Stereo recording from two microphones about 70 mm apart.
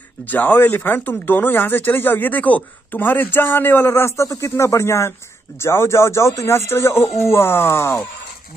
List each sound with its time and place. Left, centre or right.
0.2 s speech: left